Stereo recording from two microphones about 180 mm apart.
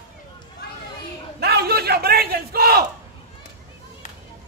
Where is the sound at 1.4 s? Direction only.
65° right (ahead or behind).